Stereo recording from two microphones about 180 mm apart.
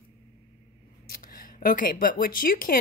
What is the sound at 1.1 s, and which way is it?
A woman's voice, 55° left (ahead or behind).